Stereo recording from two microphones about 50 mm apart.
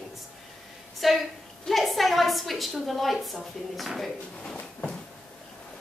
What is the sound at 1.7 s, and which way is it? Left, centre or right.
A woman's voice, centre.